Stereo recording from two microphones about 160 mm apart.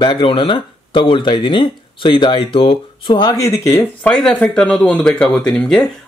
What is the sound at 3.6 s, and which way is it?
Speech, 5° left (ahead or behind).